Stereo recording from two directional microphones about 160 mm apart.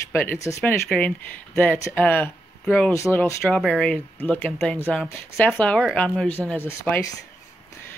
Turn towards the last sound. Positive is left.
turn(degrees=15)  # may be behind; listen again after turning